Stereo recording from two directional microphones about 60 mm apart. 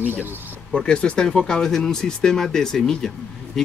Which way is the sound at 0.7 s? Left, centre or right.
Centre.